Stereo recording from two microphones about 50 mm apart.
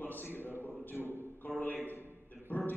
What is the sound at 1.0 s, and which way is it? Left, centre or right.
Speech, right.